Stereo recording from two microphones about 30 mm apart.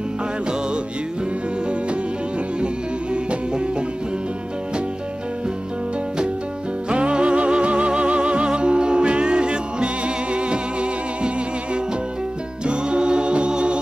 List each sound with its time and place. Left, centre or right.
6.9 s music: right